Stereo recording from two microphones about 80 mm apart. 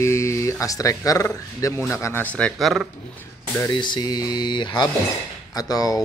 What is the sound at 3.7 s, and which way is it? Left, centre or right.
Speech, left.